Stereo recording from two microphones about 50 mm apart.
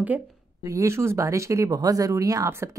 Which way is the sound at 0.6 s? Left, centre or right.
Right.